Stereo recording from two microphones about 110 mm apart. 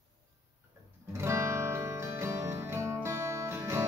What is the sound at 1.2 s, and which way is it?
Music, 25° right (ahead or behind).